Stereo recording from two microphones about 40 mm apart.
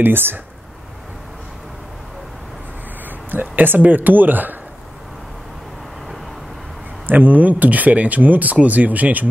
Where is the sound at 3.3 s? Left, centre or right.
Right.